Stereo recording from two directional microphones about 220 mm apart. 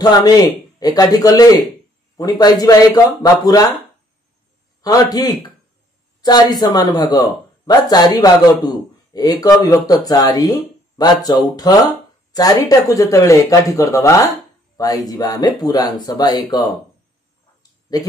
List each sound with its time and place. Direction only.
0.0 s a man's voice: 15° left (ahead or behind)
4.8 s a man's voice: 15° left (ahead or behind)
17.9 s speech: 15° left (ahead or behind)